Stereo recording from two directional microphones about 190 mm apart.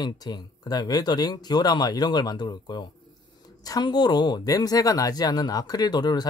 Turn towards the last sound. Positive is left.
turn(degrees=20)  # may be behind; listen again after turning